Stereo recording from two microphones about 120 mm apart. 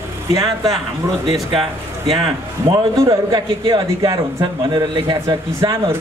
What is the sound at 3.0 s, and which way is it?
A man's voice, 25° right (ahead or behind).